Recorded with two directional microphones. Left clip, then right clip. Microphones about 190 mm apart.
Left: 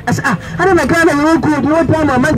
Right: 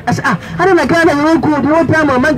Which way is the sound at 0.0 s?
20° left (ahead or behind).